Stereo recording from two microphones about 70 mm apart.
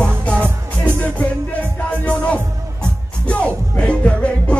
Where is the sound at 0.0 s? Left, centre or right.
Centre.